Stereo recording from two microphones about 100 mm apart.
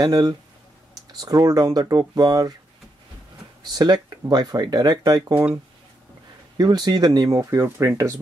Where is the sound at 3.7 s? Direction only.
40° right (ahead or behind).